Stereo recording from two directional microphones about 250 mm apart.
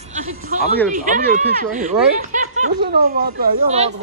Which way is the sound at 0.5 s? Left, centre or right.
Right.